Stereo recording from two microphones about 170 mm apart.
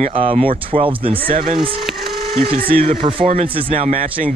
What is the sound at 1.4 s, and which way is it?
Speech, 55° right (ahead or behind).